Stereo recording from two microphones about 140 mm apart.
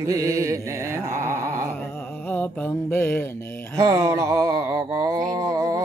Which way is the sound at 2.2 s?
15° left (ahead or behind).